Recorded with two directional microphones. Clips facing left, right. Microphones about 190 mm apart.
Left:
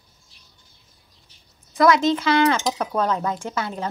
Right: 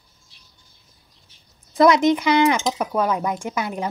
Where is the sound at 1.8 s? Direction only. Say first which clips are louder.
Right 2 dB; 20° right (ahead or behind).